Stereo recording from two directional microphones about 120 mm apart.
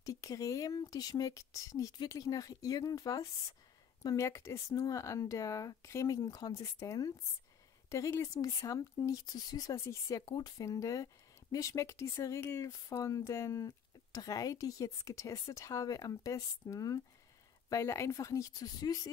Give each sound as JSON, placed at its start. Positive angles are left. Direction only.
{"t": 0.0, "sound": "speech", "side_deg": 30}